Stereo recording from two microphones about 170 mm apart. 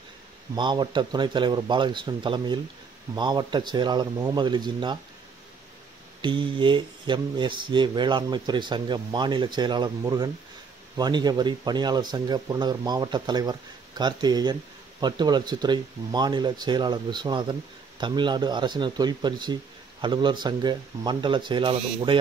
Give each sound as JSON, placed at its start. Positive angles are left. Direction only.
{"t": 0.6, "sound": "speech", "side_deg": -25}
{"t": 6.2, "sound": "speech", "side_deg": -30}